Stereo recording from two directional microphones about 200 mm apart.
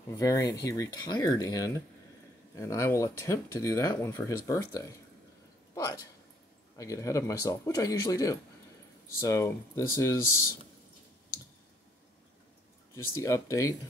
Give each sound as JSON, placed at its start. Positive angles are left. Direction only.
{"t": 0.2, "sound": "speech", "side_deg": 15}
{"t": 12.9, "sound": "speech", "side_deg": 15}